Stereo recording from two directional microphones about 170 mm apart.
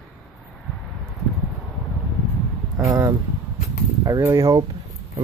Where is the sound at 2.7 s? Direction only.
Centre (ahead or behind).